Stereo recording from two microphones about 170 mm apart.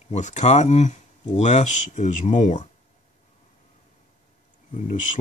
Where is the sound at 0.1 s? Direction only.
45° left (ahead or behind).